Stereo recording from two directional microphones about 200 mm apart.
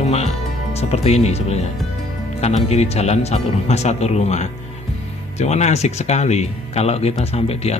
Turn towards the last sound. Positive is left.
turn(degrees=30)  # may be behind; listen again after turning